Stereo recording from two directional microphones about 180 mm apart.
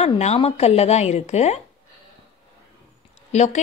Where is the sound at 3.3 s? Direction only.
40° left (ahead or behind).